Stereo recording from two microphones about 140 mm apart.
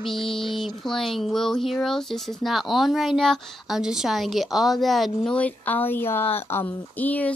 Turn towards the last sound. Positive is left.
turn(degrees=10)  # may be behind; listen again after turning